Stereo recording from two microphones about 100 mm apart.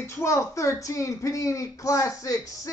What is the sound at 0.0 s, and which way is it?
Speech, 30° left (ahead or behind).